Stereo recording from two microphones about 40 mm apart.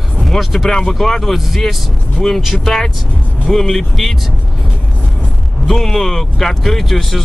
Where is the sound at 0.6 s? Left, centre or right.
Centre.